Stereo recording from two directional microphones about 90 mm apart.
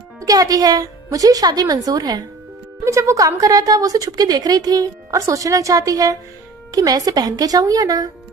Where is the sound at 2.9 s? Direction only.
35° right (ahead or behind).